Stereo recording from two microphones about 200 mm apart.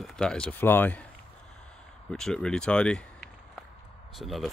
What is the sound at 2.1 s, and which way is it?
Speech, 5° left (ahead or behind).